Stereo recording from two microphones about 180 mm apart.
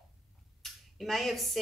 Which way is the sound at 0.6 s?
Centre (ahead or behind).